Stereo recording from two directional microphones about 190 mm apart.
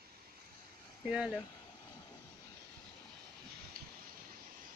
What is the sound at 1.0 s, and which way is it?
Speech, 5° right (ahead or behind).